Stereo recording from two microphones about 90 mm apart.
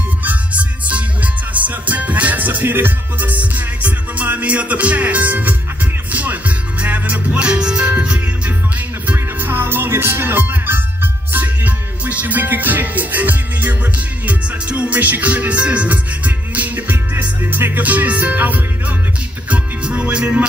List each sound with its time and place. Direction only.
0.2 s music: 15° right (ahead or behind)